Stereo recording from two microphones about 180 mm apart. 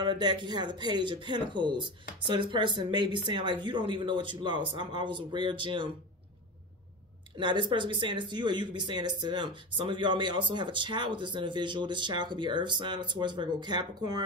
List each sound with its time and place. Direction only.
0.0 s speech: 25° right (ahead or behind)
7.3 s speech: 25° right (ahead or behind)